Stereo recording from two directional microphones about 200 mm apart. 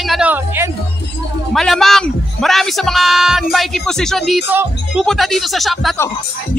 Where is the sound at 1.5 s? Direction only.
Centre (ahead or behind).